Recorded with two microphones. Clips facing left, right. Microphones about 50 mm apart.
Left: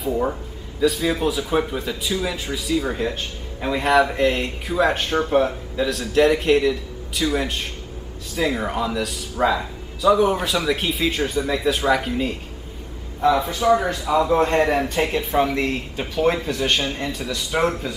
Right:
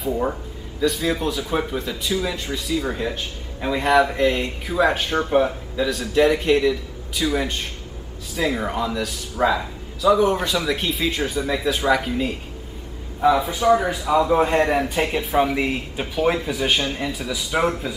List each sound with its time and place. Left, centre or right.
0.0 s speech: centre